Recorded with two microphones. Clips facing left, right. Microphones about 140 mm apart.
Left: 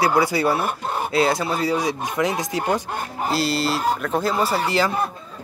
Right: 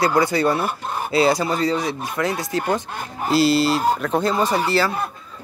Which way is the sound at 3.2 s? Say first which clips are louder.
Right 6 dB; centre (ahead or behind).